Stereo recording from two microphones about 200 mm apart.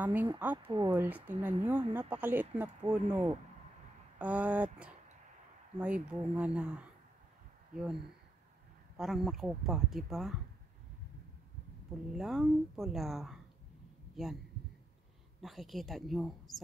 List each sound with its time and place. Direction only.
0.0 s speech: 10° right (ahead or behind)
0.7 s speech: 25° right (ahead or behind)
0.9 s speech: 10° right (ahead or behind)
12.2 s speech: centre (ahead or behind)
15.4 s speech: centre (ahead or behind)